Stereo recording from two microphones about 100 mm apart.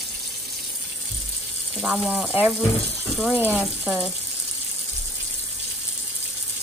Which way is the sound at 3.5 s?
10° right (ahead or behind).